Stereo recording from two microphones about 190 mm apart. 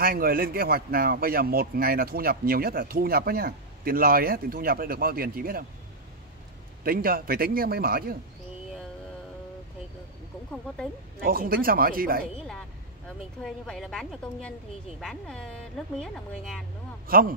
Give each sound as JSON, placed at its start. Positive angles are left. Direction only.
{"t": 0.0, "sound": "a man's voice", "side_deg": -50}
{"t": 6.8, "sound": "a man's voice", "side_deg": -50}
{"t": 11.1, "sound": "a man's voice", "side_deg": -50}
{"t": 13.4, "sound": "a woman's voice", "side_deg": 0}
{"t": 17.1, "sound": "a man's voice", "side_deg": -50}